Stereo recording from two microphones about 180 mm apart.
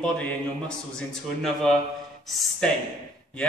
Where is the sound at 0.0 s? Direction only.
5° left (ahead or behind).